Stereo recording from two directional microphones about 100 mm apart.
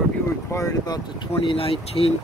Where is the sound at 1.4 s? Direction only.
60° left (ahead or behind).